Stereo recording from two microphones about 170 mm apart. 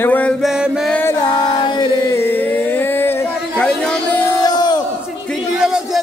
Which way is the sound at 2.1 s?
10° left (ahead or behind).